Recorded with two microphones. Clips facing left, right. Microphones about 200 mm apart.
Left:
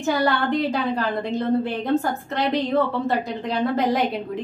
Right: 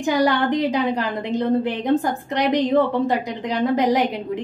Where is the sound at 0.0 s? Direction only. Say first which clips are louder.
Right 3 dB; 15° right (ahead or behind).